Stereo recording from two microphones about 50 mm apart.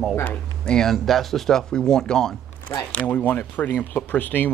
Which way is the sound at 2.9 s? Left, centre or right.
Left.